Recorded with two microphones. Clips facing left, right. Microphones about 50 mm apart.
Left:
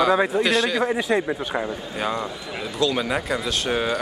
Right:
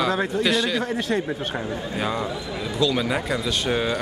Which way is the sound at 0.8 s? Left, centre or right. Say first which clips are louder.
Left 3 dB; centre.